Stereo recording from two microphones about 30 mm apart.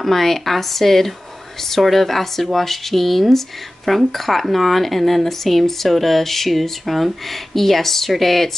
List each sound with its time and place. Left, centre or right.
0.0 s speech: centre